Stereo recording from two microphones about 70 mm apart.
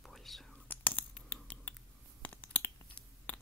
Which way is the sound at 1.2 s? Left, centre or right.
Left.